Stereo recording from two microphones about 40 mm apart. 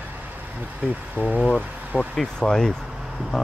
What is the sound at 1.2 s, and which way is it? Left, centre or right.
Speech, right.